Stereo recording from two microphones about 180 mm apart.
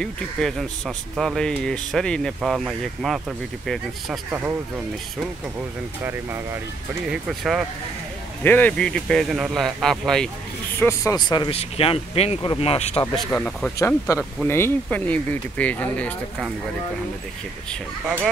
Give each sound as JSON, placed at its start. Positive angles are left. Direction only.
{"t": 0.0, "sound": "speech", "side_deg": 0}
{"t": 4.3, "sound": "speech", "side_deg": -10}
{"t": 7.1, "sound": "speech", "side_deg": 0}
{"t": 8.5, "sound": "speech", "side_deg": 10}
{"t": 10.8, "sound": "speech", "side_deg": 15}
{"t": 13.1, "sound": "speech", "side_deg": 5}